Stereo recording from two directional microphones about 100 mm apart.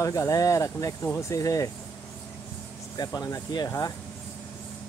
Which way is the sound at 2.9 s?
40° left (ahead or behind).